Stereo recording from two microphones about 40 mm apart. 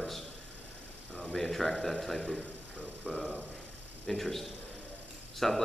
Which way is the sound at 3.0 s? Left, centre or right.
Left.